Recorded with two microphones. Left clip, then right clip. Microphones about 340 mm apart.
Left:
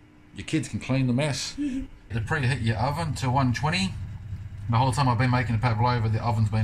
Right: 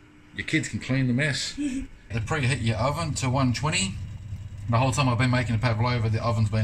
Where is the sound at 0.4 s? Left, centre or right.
Centre.